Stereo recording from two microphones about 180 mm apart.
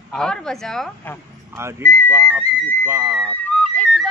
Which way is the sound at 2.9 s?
10° right (ahead or behind).